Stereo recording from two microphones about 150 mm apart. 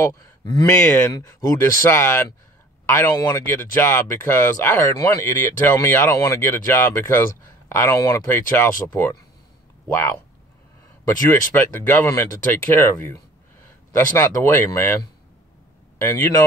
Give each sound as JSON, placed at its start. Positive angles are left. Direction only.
{"t": 0.0, "sound": "speech", "side_deg": 20}